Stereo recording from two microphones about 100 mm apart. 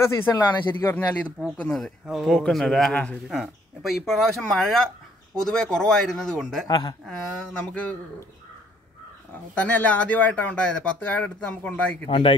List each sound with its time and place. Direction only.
0.0 s speech: 25° left (ahead or behind)
1.6 s speech: 10° left (ahead or behind)
2.0 s speech: 5° right (ahead or behind); by 3.2 s 15° left (ahead or behind)
3.3 s speech: centre (ahead or behind)
6.7 s speech: 45° left (ahead or behind)
7.1 s speech: 10° left (ahead or behind)
9.6 s speech: 15° left (ahead or behind)
12.1 s speech: 60° left (ahead or behind)